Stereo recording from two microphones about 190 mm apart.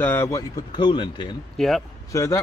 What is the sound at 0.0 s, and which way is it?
Speech, 10° left (ahead or behind).